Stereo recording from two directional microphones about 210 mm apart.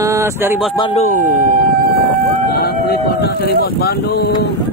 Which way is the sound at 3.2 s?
45° left (ahead or behind).